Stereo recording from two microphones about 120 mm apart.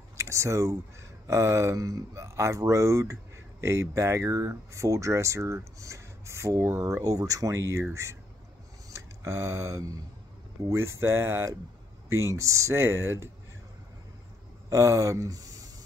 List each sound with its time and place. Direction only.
0.2 s speech: 25° right (ahead or behind)
8.9 s a sound: 25° right (ahead or behind)
10.7 s speech: 20° right (ahead or behind)
14.7 s speech: 25° right (ahead or behind)